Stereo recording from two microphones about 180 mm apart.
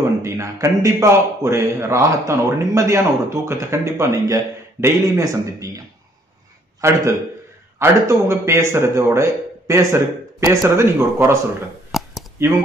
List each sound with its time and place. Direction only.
0.2 s a man's voice: 20° right (ahead or behind)
6.8 s a man's voice: 15° right (ahead or behind)
11.9 s a sound: centre (ahead or behind)